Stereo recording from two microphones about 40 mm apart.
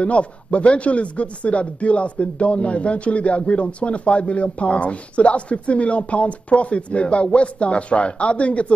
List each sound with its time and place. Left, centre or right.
0.0 s speech: left